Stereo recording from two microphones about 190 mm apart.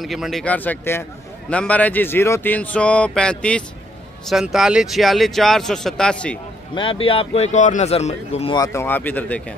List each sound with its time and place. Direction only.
0.0 s speech: centre (ahead or behind)
6.7 s a man's voice: 25° left (ahead or behind)
8.5 s speech: 15° left (ahead or behind)